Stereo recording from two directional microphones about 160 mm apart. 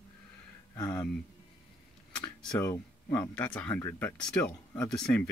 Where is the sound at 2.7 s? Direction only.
20° left (ahead or behind).